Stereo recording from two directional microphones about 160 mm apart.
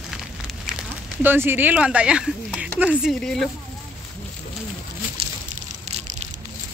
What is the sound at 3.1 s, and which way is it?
Speech, 5° left (ahead or behind).